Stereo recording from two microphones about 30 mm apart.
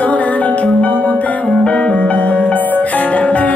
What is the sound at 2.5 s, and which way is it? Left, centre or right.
Music, left.